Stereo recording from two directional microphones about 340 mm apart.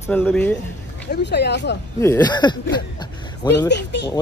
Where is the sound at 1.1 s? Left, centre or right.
Left.